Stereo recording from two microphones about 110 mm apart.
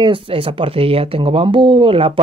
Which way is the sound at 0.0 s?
55° right (ahead or behind).